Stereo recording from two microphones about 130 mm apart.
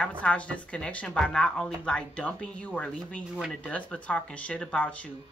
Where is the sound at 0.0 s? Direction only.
10° left (ahead or behind).